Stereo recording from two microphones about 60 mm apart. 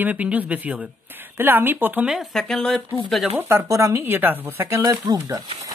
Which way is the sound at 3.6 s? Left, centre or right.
Right.